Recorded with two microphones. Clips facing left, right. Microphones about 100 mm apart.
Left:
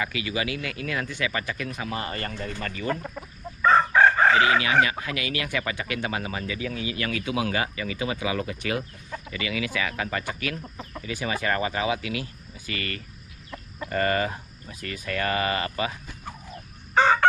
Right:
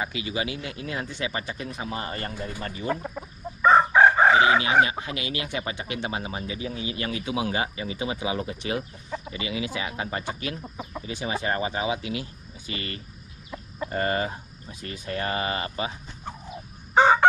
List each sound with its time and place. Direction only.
0.3 s speech: 25° right (ahead or behind)
0.7 s speech: 65° left (ahead or behind)
1.0 s speech: 20° right (ahead or behind)
2.6 s chicken: 20° right (ahead or behind)
6.0 s speech: 25° right (ahead or behind)
10.6 s speech: 15° right (ahead or behind)
11.0 s speech: 25° right (ahead or behind)
16.5 s chicken: 15° right (ahead or behind)